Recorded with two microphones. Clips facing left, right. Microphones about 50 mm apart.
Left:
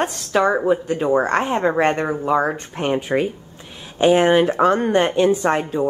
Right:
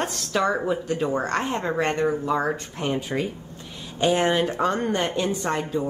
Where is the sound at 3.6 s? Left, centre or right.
Centre.